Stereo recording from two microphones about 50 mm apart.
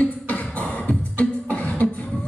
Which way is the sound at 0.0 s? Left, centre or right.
Left.